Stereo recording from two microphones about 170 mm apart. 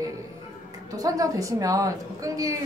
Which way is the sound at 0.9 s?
20° right (ahead or behind).